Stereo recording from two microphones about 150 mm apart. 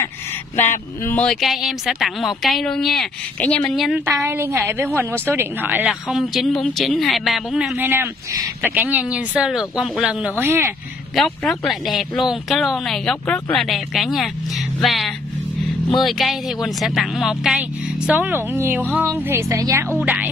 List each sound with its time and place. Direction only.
0.6 s speech: 10° left (ahead or behind)
4.2 s a woman's voice: 15° right (ahead or behind)
11.1 s a woman's voice: centre (ahead or behind); by 19.9 s 20° right (ahead or behind)
20.0 s a woman's voice: 10° right (ahead or behind)